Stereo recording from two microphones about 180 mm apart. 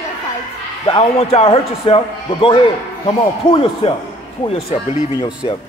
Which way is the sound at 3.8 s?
30° left (ahead or behind).